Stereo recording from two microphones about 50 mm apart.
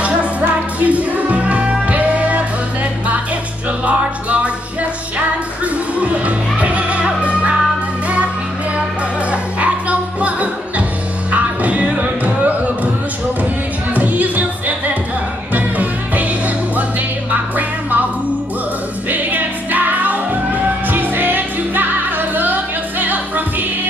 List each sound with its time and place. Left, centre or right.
0.0 s music: right
5.9 s music: right
9.3 s music: right
13.9 s music: right
15.5 s music: right
19.0 s music: right